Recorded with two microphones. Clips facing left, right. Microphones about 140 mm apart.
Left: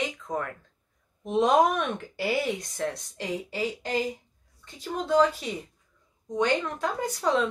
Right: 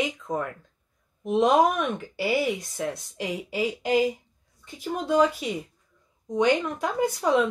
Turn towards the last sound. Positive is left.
turn(degrees=-10)  # may be behind; listen again after turning